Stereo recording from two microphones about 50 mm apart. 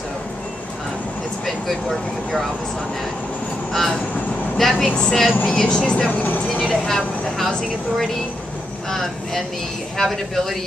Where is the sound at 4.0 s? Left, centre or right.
Left.